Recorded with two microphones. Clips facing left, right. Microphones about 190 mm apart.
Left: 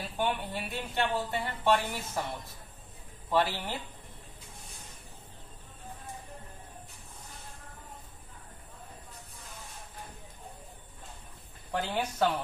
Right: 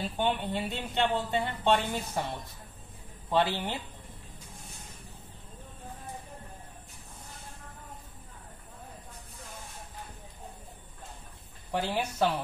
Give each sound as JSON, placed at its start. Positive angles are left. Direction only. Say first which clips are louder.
{"t": 0.0, "sound": "speech", "louder": "right 2 dB", "side_deg": -20}
{"t": 3.3, "sound": "speech", "louder": "right 1 dB", "side_deg": -20}
{"t": 11.7, "sound": "speech", "louder": "right 1 dB", "side_deg": -10}